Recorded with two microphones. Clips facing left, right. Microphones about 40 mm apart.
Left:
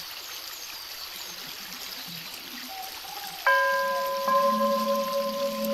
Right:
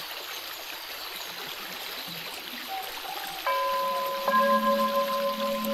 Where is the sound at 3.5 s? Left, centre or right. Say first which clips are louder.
Left 6 dB; left.